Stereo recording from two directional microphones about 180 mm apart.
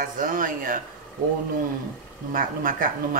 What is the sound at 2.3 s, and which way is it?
Speech, 50° right (ahead or behind).